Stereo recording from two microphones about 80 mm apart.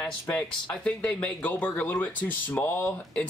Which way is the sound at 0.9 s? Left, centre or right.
Centre.